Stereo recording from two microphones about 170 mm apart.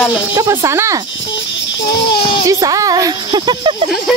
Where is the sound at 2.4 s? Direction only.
20° right (ahead or behind).